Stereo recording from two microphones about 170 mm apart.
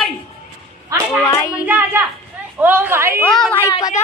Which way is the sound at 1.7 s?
10° right (ahead or behind).